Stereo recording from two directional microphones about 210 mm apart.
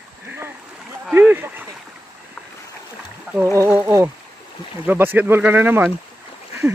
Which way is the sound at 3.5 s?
10° right (ahead or behind).